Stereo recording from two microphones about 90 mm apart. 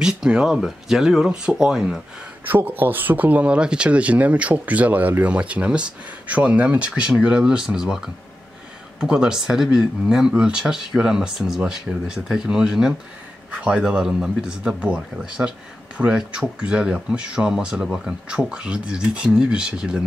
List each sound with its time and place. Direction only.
0.0 s speech: 5° right (ahead or behind)
2.4 s speech: 20° right (ahead or behind)